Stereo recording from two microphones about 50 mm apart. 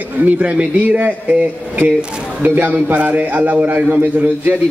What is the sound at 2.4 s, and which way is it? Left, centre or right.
Speech, right.